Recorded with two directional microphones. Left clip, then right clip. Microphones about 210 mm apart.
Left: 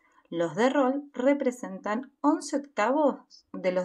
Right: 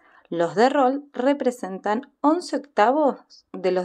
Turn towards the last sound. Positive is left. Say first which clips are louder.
# right 4 dB
turn(degrees=-25)  # may be behind; listen again after turning